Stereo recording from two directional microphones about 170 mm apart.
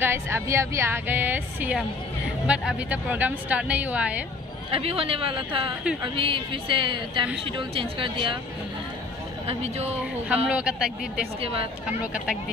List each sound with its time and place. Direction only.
0.0 s a woman's voice: 15° right (ahead or behind)
4.7 s a woman's voice: 35° right (ahead or behind)
9.6 s speech: 40° right (ahead or behind)
10.2 s a woman's voice: 5° right (ahead or behind)